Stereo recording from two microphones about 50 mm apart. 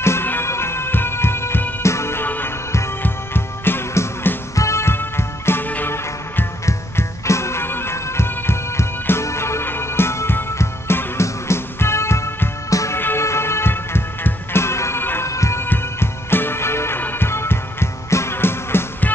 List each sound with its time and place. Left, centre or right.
0.0 s bagpipes: left
1.8 s music: left
2.2 s music: left
4.6 s music: left
6.6 s music: left
7.6 s music: left
7.9 s music: left
9.2 s music: left
9.7 s music: left
12.9 s music: left
15.2 s music: left
15.6 s music: left